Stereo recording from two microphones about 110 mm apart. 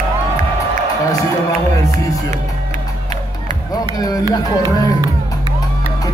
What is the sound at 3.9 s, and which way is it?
Speech, 35° left (ahead or behind).